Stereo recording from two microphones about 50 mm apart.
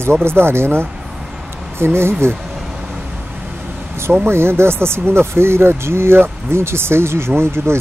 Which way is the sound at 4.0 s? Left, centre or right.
Right.